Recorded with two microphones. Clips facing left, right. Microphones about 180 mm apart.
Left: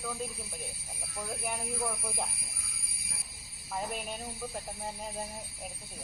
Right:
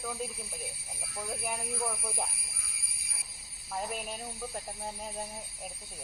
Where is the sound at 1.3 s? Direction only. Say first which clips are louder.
Even; centre (ahead or behind).